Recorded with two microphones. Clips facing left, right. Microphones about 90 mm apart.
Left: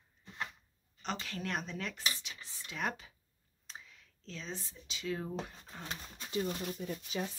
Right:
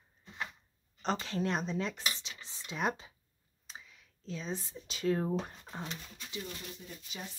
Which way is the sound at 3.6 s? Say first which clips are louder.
Right 1 dB; 5° right (ahead or behind).